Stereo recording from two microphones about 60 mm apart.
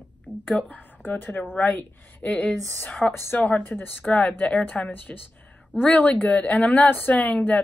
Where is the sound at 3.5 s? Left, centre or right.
Left.